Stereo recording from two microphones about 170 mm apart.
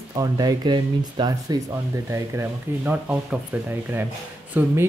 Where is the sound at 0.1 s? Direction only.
25° right (ahead or behind).